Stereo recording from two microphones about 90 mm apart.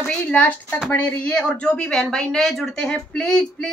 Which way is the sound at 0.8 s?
15° left (ahead or behind).